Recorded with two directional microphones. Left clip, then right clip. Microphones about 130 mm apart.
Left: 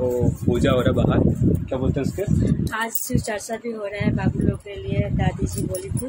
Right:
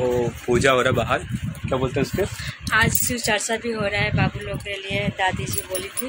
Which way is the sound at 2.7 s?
30° left (ahead or behind).